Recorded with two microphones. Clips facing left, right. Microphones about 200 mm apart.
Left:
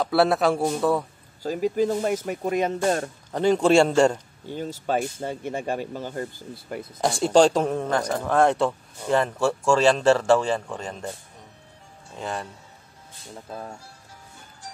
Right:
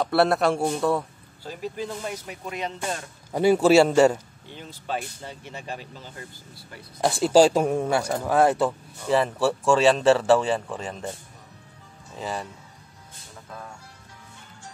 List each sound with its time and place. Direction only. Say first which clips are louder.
0.0 s speech: left 1 dB; centre (ahead or behind)
1.4 s speech: left 9 dB; 45° left (ahead or behind)
3.3 s speech: right 1 dB; 10° right (ahead or behind)
4.5 s speech: left 6 dB; 45° left (ahead or behind)
7.0 s speech: right 1 dB; centre (ahead or behind)
12.2 s speech: even; centre (ahead or behind)
13.5 s speech: left 4 dB; 35° left (ahead or behind)